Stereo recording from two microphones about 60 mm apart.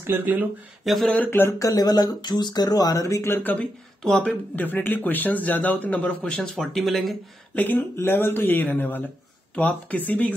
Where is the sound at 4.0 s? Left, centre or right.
Centre.